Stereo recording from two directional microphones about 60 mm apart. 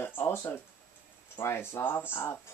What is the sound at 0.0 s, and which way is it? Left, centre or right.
Speech, left.